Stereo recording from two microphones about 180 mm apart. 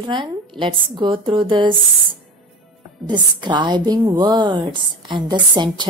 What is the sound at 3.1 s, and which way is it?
A woman's voice, 25° right (ahead or behind).